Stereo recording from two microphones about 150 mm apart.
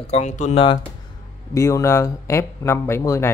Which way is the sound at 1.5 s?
20° left (ahead or behind).